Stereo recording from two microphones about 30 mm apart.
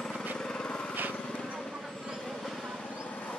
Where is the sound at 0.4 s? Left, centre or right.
Left.